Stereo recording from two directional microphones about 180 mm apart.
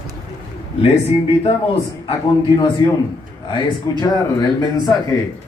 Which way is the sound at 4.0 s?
20° left (ahead or behind).